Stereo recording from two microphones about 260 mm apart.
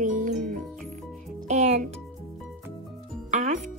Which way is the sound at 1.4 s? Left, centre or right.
Right.